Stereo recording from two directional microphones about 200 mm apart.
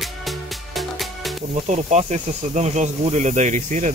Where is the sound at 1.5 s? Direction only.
35° right (ahead or behind).